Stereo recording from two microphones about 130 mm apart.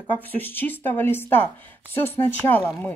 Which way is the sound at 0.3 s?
15° left (ahead or behind).